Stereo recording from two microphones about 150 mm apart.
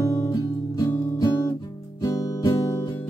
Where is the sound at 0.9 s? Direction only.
20° left (ahead or behind).